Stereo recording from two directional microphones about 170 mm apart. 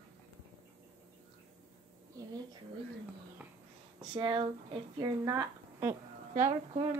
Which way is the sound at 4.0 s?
30° right (ahead or behind).